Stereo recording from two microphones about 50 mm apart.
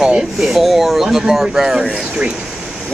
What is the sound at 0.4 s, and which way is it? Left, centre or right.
Speech, centre.